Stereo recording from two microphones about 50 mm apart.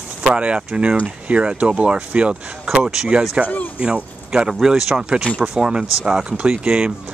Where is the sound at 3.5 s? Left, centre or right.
Left.